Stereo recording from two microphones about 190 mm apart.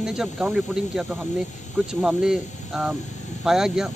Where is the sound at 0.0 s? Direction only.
5° right (ahead or behind).